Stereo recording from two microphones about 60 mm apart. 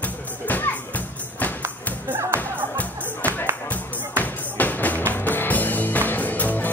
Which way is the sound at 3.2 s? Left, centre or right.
Left.